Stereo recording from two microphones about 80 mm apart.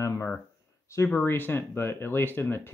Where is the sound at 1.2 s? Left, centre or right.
Left.